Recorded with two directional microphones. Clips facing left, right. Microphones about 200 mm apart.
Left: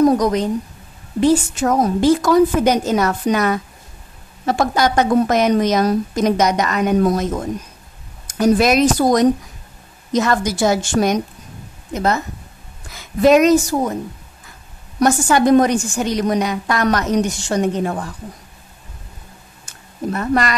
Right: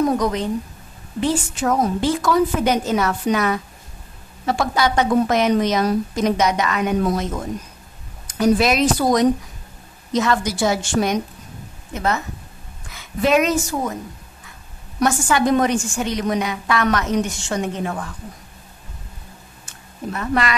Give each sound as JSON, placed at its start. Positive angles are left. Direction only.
{"t": 0.0, "sound": "a woman's voice", "side_deg": 40}
{"t": 8.3, "sound": "a woman's voice", "side_deg": 45}
{"t": 13.2, "sound": "a woman's voice", "side_deg": 40}
{"t": 15.0, "sound": "a woman's voice", "side_deg": 40}
{"t": 20.1, "sound": "a woman's voice", "side_deg": 40}